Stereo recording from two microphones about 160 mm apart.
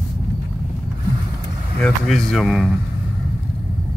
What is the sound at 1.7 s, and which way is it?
Speech, 5° left (ahead or behind).